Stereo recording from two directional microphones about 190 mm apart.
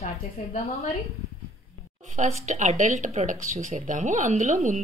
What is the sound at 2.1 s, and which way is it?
A woman's voice, 40° right (ahead or behind).